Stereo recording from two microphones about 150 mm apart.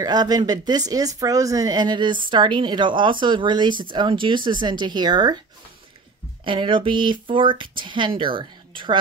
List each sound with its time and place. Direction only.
0.0 s speech: 25° right (ahead or behind)
6.4 s speech: 35° right (ahead or behind)